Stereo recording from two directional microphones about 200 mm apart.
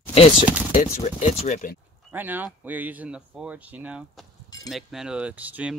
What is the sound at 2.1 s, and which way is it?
Speech, 10° right (ahead or behind).